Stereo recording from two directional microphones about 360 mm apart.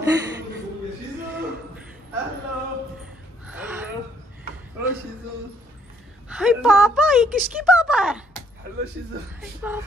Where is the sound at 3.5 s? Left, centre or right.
Centre.